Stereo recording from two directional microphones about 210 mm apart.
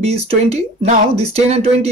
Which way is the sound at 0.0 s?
30° right (ahead or behind).